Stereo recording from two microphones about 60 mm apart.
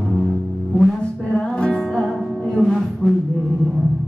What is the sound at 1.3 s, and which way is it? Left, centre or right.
Music, centre.